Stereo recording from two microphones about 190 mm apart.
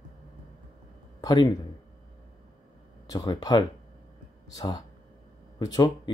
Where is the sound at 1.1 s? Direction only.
20° left (ahead or behind).